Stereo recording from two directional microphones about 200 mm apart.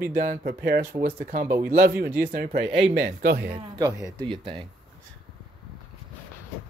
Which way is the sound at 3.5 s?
25° right (ahead or behind).